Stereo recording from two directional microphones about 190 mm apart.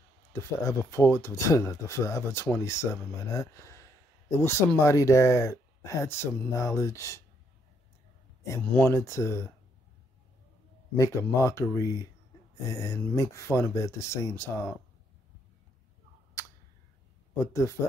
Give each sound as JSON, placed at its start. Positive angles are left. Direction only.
{"t": 0.3, "sound": "speech", "side_deg": 15}
{"t": 8.5, "sound": "speech", "side_deg": 10}
{"t": 11.0, "sound": "speech", "side_deg": 15}
{"t": 16.4, "sound": "a sound", "side_deg": 15}
{"t": 17.5, "sound": "speech", "side_deg": 15}